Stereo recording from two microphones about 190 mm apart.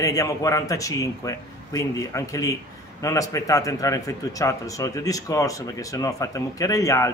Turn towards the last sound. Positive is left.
turn(degrees=15)  # may be behind; listen again after turning